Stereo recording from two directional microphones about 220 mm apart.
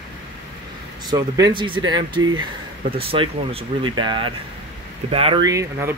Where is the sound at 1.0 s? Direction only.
15° right (ahead or behind).